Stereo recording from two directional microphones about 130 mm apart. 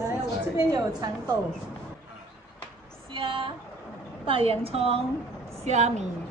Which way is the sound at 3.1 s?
35° right (ahead or behind).